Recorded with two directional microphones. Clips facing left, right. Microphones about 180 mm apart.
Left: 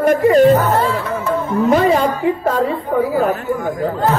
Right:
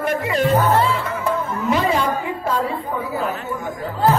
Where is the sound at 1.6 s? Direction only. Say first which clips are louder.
Left 6 dB; 45° left (ahead or behind).